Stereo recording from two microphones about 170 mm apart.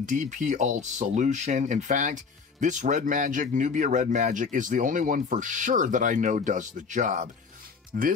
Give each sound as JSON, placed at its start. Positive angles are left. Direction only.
{"t": 0.0, "sound": "speech", "side_deg": -50}